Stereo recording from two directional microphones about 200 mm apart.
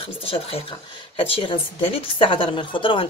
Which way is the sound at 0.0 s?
30° left (ahead or behind).